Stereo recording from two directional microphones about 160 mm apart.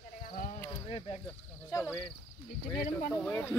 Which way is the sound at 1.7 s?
15° left (ahead or behind).